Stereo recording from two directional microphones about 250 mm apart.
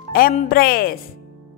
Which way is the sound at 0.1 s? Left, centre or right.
Left.